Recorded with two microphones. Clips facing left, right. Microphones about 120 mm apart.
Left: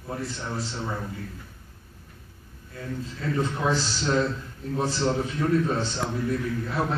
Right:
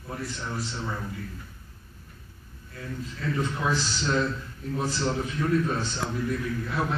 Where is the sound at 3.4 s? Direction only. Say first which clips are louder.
Left 3 dB; 25° left (ahead or behind).